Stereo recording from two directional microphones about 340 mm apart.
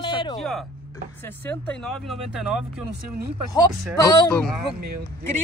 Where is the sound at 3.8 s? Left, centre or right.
Centre.